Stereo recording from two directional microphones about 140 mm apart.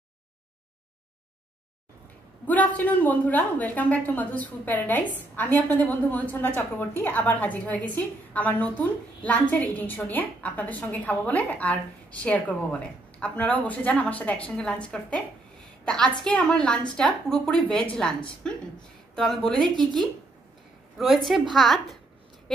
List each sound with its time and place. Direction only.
2.4 s a woman's voice: 10° left (ahead or behind)
19.7 s speech: 30° right (ahead or behind)
21.3 s a woman's voice: centre (ahead or behind)